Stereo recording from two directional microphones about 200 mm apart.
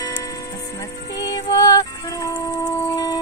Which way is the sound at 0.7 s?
20° left (ahead or behind).